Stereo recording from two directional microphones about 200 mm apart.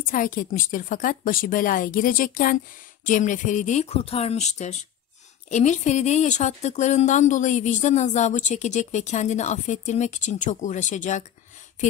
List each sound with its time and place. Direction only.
0.0 s a woman's voice: 40° left (ahead or behind)